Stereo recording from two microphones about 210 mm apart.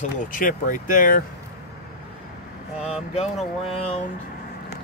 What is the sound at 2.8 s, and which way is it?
Vehicle, 5° right (ahead or behind).